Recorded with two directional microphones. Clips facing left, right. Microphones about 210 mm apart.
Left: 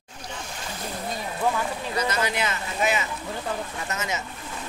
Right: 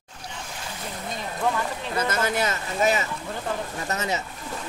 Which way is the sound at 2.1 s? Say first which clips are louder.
Right 2 dB; 45° right (ahead or behind).